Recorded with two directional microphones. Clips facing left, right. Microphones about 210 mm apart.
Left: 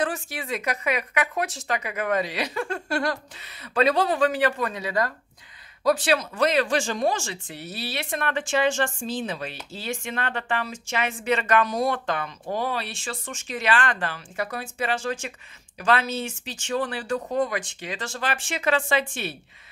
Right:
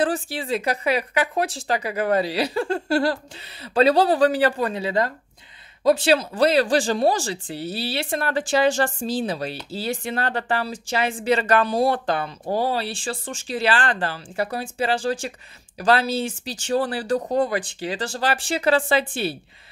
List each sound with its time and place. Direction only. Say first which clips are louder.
0.0 s speech: right 5 dB; 30° right (ahead or behind)